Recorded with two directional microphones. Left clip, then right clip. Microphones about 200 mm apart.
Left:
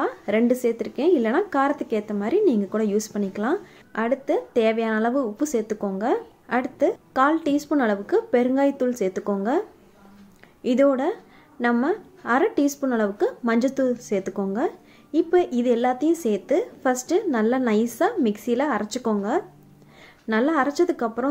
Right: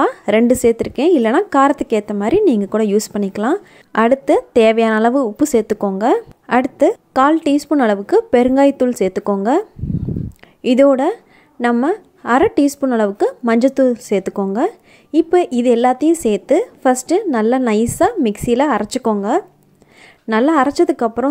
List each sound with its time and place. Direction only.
0.0 s a woman's voice: 45° right (ahead or behind)